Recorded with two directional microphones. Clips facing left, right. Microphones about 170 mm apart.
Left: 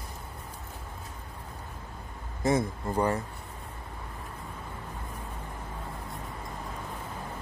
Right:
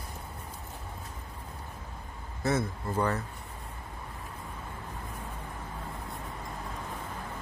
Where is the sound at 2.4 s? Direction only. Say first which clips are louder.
Left 3 dB; 15° left (ahead or behind).